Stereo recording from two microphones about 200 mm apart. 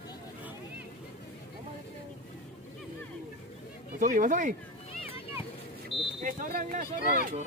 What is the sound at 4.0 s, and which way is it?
Speech, 40° right (ahead or behind).